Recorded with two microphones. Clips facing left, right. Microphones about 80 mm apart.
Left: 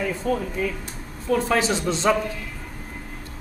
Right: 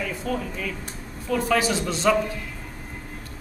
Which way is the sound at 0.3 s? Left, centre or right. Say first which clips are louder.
Left 5 dB; left.